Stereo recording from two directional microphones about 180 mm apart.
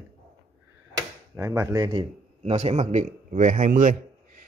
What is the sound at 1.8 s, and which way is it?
A man's voice, 30° right (ahead or behind).